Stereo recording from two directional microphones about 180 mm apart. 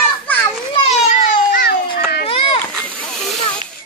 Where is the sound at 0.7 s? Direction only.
35° left (ahead or behind).